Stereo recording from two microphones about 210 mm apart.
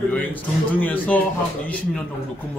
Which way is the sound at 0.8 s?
5° left (ahead or behind).